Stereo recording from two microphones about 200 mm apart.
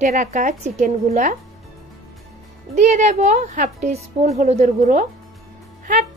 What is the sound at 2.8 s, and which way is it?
A woman's voice, 35° right (ahead or behind).